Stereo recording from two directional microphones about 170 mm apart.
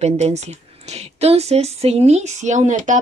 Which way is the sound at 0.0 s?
40° right (ahead or behind).